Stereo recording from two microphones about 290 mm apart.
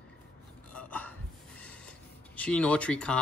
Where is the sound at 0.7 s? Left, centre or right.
Centre.